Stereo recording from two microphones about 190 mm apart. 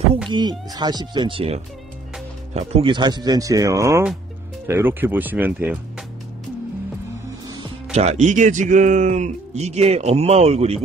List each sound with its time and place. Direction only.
0.3 s speech: 20° right (ahead or behind)
7.9 s speech: 35° right (ahead or behind)